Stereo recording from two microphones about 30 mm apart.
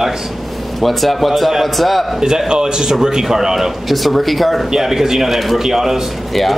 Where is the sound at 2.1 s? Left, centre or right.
Right.